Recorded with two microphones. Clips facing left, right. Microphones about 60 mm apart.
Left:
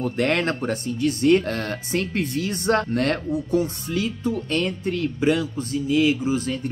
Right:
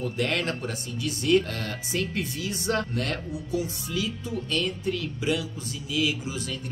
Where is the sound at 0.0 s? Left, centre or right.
Left.